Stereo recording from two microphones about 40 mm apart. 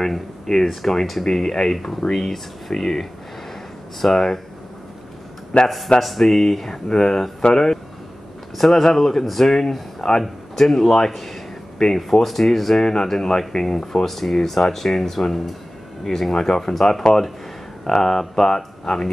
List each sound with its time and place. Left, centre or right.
0.0 s speech: centre
5.5 s a man's voice: left
5.9 s speech: centre